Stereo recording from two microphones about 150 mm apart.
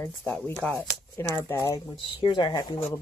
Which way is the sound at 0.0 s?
15° left (ahead or behind).